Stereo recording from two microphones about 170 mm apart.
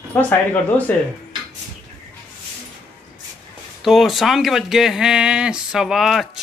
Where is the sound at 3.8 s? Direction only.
Centre (ahead or behind).